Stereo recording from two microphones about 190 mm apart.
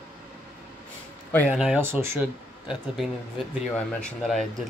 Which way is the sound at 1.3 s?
5° left (ahead or behind).